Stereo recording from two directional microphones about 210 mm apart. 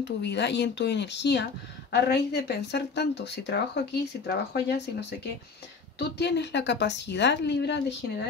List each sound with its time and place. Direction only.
0.2 s speech: 55° left (ahead or behind)
5.9 s speech: 55° left (ahead or behind)